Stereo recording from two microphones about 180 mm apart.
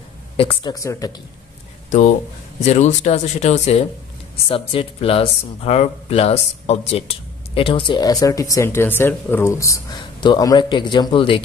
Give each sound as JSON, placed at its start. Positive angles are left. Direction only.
{"t": 0.4, "sound": "speech", "side_deg": 30}
{"t": 0.7, "sound": "speech", "side_deg": 20}
{"t": 1.9, "sound": "speech", "side_deg": 40}